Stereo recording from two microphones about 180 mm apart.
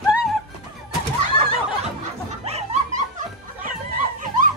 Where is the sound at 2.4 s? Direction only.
35° right (ahead or behind).